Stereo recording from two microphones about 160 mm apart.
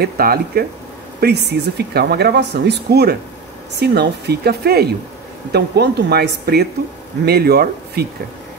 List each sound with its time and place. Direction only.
0.0 s speech: 70° right (ahead or behind)
1.2 s speech: 90° right